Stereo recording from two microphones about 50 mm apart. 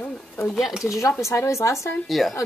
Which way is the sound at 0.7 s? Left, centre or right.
Centre.